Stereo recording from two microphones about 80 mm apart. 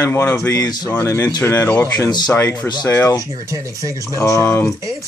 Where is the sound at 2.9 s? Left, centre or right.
Left.